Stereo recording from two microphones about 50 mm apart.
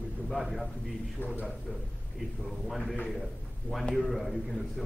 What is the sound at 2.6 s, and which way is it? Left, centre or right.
A man's voice, centre.